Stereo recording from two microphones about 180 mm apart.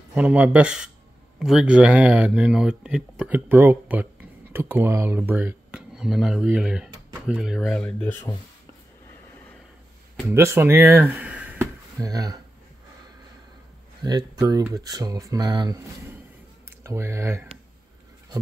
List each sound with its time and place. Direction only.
0.1 s speech: 5° right (ahead or behind); by 8.4 s 10° left (ahead or behind)
10.3 s speech: 15° right (ahead or behind)
14.0 s speech: 20° right (ahead or behind)